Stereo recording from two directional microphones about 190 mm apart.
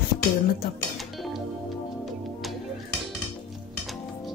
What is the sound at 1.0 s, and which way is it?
Music, centre (ahead or behind).